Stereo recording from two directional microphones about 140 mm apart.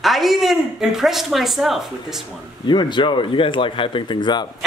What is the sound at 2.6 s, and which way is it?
Speech, 35° left (ahead or behind).